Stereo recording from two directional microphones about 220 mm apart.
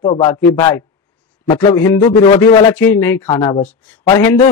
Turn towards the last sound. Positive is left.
turn(degrees=10)  # may be behind; listen again after turning